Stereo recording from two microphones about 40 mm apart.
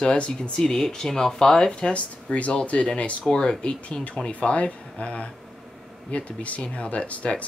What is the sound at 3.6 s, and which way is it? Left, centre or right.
Speech, left.